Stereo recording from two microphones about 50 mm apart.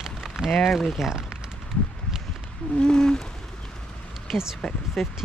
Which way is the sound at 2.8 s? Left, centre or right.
Centre.